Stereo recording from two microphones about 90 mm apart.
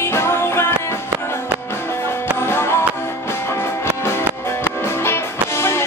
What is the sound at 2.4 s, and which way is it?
Music, 30° left (ahead or behind).